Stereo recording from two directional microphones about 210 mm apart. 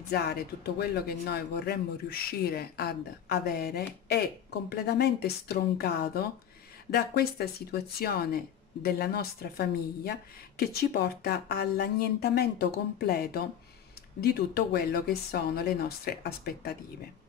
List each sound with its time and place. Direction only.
0.1 s a man's voice: 50° left (ahead or behind)